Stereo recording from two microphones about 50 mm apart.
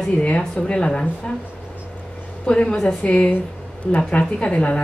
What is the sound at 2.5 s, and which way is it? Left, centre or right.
A woman's voice, centre.